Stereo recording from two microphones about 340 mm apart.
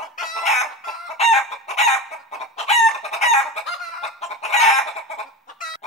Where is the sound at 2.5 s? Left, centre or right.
Centre.